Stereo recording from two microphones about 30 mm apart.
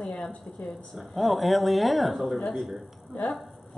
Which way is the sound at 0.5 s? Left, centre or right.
Left.